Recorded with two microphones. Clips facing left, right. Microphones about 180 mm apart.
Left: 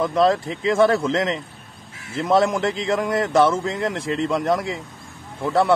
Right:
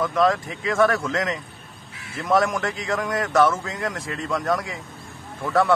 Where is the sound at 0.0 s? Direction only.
30° left (ahead or behind).